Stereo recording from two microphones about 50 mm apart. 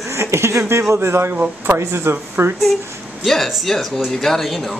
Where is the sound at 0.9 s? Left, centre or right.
Right.